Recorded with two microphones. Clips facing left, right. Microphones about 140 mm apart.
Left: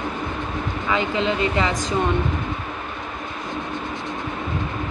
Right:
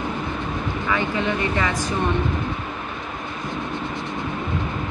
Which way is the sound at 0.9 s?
20° left (ahead or behind).